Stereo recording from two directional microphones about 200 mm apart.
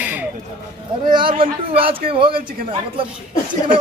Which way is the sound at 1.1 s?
25° right (ahead or behind).